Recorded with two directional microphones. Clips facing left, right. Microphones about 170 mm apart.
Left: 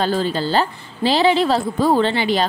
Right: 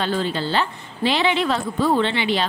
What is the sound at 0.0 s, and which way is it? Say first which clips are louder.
Speech: left 3 dB; 40° left (ahead or behind).